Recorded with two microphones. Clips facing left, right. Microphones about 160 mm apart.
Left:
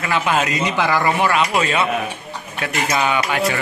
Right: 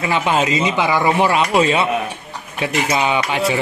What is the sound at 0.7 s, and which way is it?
Speech, 15° right (ahead or behind).